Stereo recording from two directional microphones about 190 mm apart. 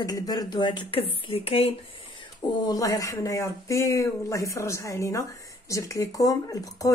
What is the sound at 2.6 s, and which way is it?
Speech, 20° left (ahead or behind).